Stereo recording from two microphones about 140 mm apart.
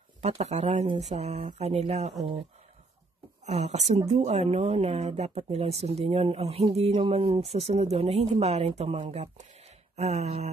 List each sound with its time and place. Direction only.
0.2 s speech: 50° right (ahead or behind)
3.4 s speech: 55° right (ahead or behind)